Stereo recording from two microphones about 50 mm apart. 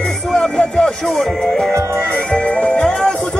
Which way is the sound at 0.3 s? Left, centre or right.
Centre.